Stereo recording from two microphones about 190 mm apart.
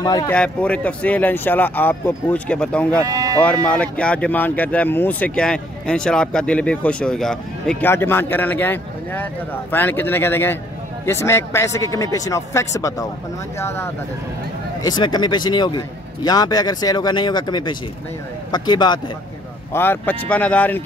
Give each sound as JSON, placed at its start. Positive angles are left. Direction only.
{"t": 0.0, "sound": "speech", "side_deg": 20}
{"t": 0.3, "sound": "speech", "side_deg": 5}
{"t": 3.0, "sound": "speech", "side_deg": -20}
{"t": 3.3, "sound": "speech", "side_deg": 5}
{"t": 19.7, "sound": "speech", "side_deg": 10}